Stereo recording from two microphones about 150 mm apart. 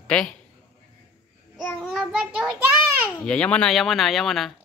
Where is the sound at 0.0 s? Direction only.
5° left (ahead or behind).